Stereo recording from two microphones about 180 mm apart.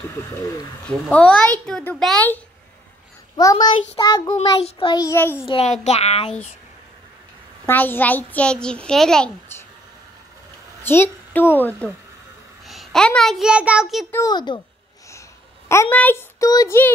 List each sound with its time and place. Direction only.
0.8 s speech: 5° left (ahead or behind)
3.3 s child singing: 20° left (ahead or behind)
4.6 s child singing: 30° left (ahead or behind); by 5.4 s 15° left (ahead or behind)
5.5 s a child's voice: 35° left (ahead or behind)
7.6 s speech: 10° left (ahead or behind)
10.8 s a woman's voice: 10° left (ahead or behind)
14.1 s child singing: 20° left (ahead or behind)
15.7 s speech: 10° left (ahead or behind)